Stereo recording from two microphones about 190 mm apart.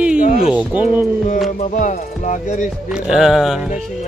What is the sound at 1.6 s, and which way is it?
Speech, 40° left (ahead or behind).